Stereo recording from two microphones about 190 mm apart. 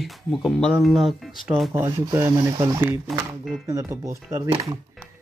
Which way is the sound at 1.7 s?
15° right (ahead or behind).